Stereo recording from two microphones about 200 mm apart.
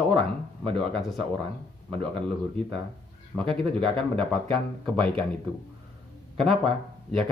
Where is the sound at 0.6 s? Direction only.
25° right (ahead or behind).